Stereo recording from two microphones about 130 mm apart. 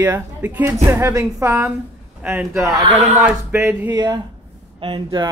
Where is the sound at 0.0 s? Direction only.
15° right (ahead or behind).